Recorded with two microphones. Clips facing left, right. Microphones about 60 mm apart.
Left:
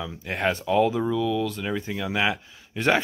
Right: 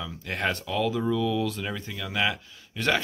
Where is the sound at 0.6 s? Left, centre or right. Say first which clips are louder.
Left 6 dB; left.